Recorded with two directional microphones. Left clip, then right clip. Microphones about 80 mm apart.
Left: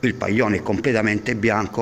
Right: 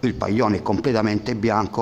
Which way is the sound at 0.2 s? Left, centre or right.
Right.